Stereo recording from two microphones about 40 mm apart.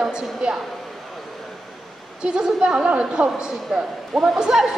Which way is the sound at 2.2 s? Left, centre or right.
Right.